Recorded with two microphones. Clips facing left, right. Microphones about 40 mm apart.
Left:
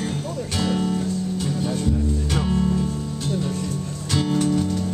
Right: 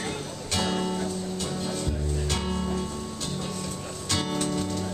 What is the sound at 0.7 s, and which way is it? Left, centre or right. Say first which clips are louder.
Music: left 5 dB; centre.